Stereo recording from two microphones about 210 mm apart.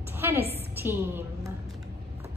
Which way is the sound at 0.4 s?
30° right (ahead or behind).